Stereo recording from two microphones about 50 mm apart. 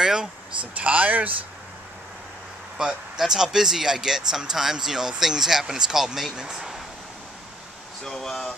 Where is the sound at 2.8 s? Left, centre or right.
Centre.